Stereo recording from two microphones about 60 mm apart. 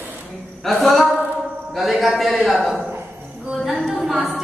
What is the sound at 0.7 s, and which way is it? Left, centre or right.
A woman's voice, centre.